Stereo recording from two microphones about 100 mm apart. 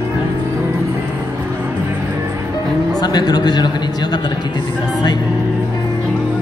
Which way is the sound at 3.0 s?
45° left (ahead or behind).